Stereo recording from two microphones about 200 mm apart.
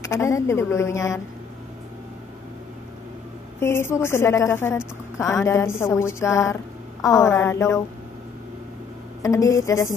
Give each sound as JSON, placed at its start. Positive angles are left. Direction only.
{"t": 0.0, "sound": "a woman's voice", "side_deg": 15}
{"t": 3.5, "sound": "a woman's voice", "side_deg": 10}
{"t": 9.2, "sound": "a woman's voice", "side_deg": 15}